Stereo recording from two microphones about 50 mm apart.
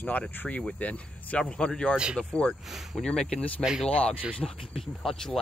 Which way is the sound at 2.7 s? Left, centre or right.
Centre.